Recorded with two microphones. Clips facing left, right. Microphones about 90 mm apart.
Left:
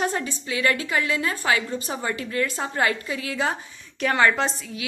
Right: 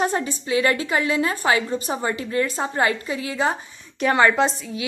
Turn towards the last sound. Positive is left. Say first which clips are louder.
# right 5 dB
turn(degrees=-10)  # may be behind; listen again after turning